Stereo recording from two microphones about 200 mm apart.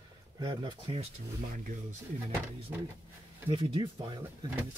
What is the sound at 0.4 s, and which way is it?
Speech, 20° right (ahead or behind).